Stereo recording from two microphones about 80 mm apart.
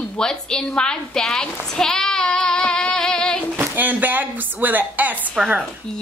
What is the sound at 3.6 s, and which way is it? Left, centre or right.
Speech, right.